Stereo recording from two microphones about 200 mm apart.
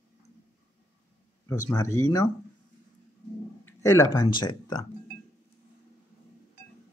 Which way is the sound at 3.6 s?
15° left (ahead or behind).